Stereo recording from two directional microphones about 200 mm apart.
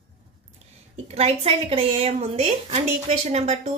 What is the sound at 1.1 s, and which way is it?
A woman's voice, 30° right (ahead or behind).